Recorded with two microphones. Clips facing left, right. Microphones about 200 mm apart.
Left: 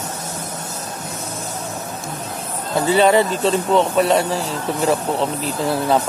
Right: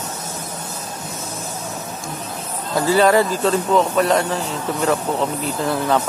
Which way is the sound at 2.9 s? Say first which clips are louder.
Even; 25° left (ahead or behind).